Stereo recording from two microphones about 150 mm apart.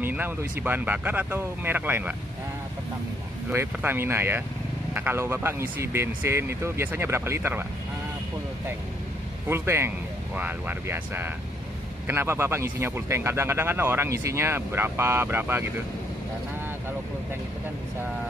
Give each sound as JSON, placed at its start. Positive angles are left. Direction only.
{"t": 0.0, "sound": "speech", "side_deg": -15}
{"t": 3.4, "sound": "speech", "side_deg": -15}
{"t": 9.5, "sound": "speech", "side_deg": -15}